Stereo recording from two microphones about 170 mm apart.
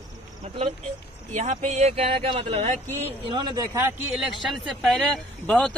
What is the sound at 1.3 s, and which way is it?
Speech, 45° right (ahead or behind).